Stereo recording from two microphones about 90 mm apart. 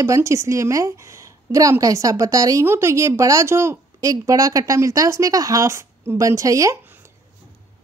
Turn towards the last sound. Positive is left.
turn(degrees=-40)  # may be behind; listen again after turning